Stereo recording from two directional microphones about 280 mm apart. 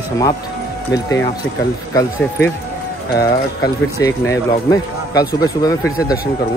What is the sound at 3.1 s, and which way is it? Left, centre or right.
Speech, centre.